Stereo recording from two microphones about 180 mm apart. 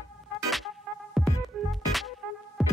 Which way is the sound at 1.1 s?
Centre (ahead or behind).